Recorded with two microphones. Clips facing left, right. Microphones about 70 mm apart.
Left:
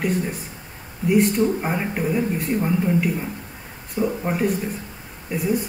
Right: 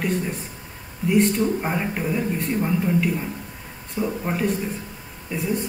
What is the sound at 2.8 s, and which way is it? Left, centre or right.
Speech, centre.